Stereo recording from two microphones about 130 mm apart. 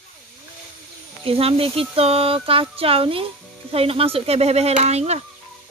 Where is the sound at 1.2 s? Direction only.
45° right (ahead or behind).